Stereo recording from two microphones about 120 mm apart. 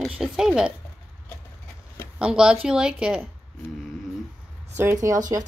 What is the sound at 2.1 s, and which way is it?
A woman's voice, 5° right (ahead or behind).